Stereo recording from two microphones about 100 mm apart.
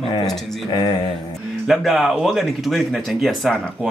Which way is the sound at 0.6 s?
50° left (ahead or behind).